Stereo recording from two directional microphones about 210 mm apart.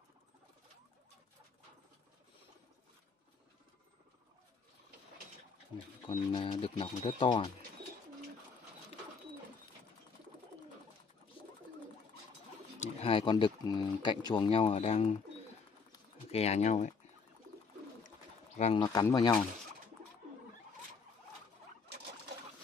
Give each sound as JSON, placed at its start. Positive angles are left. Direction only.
{"t": 6.0, "sound": "speech", "side_deg": 25}
{"t": 12.8, "sound": "speech", "side_deg": 25}
{"t": 15.9, "sound": "pigeon", "side_deg": 30}
{"t": 18.6, "sound": "speech", "side_deg": 30}
{"t": 18.9, "sound": "speech", "side_deg": 15}